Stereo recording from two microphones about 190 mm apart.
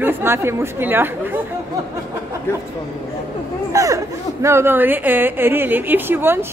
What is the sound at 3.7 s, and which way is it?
Speech, 15° right (ahead or behind).